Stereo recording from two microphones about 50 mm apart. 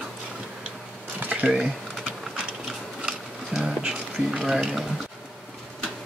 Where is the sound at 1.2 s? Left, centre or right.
Right.